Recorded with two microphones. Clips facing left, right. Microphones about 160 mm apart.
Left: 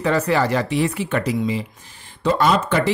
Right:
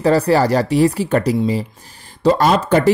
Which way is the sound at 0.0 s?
35° right (ahead or behind).